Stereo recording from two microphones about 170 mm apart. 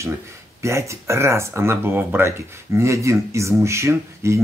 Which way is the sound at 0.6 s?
15° right (ahead or behind).